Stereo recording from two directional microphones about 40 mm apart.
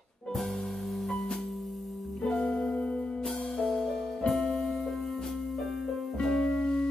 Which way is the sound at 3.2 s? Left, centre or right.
Centre.